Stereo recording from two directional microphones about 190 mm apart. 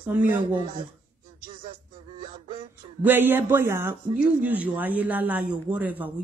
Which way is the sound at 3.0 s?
10° right (ahead or behind).